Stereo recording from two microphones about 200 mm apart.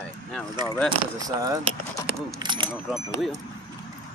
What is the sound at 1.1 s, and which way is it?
Speech, 20° right (ahead or behind).